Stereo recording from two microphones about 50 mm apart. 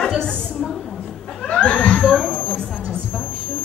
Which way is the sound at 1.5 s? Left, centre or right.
Left.